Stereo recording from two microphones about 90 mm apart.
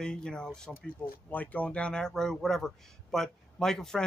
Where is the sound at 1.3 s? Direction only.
20° left (ahead or behind).